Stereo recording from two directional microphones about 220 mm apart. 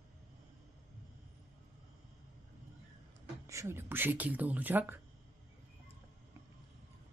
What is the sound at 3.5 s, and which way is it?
Speech, 10° right (ahead or behind).